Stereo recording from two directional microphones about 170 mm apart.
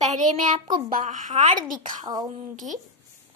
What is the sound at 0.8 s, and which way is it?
Speech, 50° right (ahead or behind).